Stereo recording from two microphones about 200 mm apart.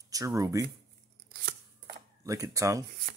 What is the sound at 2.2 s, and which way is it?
Speech, 15° right (ahead or behind).